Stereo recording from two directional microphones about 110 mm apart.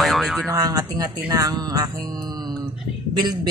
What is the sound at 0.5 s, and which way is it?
Speech, 35° right (ahead or behind).